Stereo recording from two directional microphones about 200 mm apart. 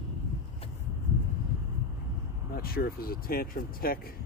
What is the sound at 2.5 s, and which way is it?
Speech, 50° left (ahead or behind).